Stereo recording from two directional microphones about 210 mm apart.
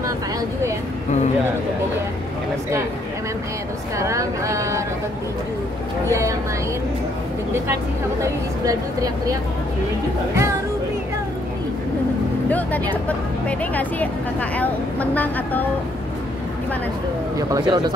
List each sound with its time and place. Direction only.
4.0 s speech: 15° right (ahead or behind)
8.2 s speech: 15° right (ahead or behind)
12.4 s a woman's voice: 5° left (ahead or behind)
17.5 s speech: 20° right (ahead or behind)